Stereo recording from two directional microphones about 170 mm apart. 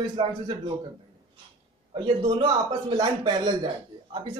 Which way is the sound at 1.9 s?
25° right (ahead or behind).